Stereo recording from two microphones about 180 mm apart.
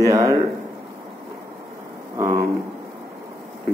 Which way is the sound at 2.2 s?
15° right (ahead or behind).